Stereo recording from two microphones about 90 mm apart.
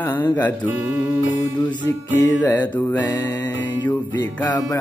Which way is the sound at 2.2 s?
30° left (ahead or behind).